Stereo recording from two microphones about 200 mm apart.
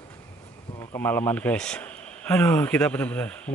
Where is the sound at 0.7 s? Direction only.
10° left (ahead or behind).